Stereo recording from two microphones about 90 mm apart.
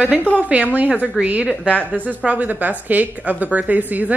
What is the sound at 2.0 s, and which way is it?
A woman's voice, 15° right (ahead or behind).